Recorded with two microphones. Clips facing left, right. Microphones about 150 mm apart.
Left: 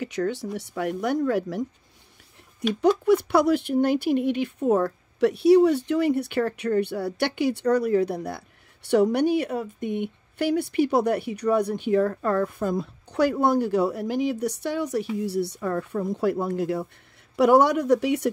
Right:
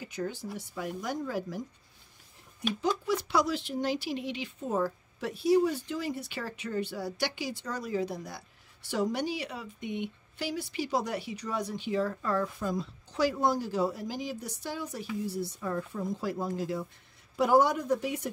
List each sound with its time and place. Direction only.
0.0 s speech: 75° left (ahead or behind)
2.7 s speech: 60° left (ahead or behind); by 18.3 s 75° left (ahead or behind)